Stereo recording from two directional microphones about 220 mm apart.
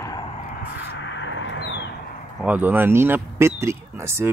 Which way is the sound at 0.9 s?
55° left (ahead or behind).